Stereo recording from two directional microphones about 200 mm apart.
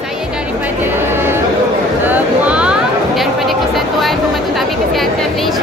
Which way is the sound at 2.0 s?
10° right (ahead or behind).